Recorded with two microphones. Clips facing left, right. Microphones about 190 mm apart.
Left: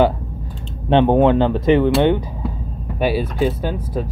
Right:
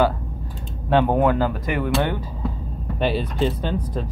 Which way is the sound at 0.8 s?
25° left (ahead or behind).